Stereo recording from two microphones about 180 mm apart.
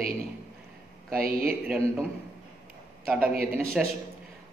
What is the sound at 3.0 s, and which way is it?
Speech, 5° right (ahead or behind).